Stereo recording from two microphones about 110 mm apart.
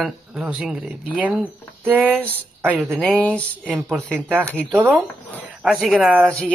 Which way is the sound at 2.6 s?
15° right (ahead or behind).